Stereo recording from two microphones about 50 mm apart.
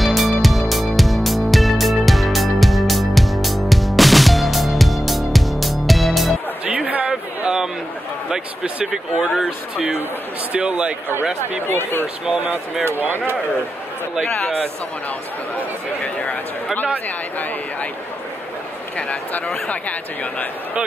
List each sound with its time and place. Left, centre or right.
0.0 s music: centre
7.1 s a sound: centre
8.9 s speech: centre
10.5 s speech: right
11.7 s speech: left
15.5 s speech: left
18.9 s speech: left